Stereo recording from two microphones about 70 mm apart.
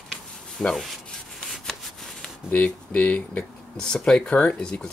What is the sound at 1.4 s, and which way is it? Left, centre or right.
Rub, centre.